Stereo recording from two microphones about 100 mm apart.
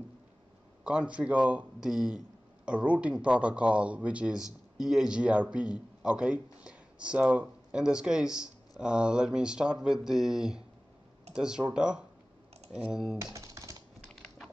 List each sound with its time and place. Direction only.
0.8 s a man's voice: 10° right (ahead or behind)
13.2 s typing: 30° right (ahead or behind)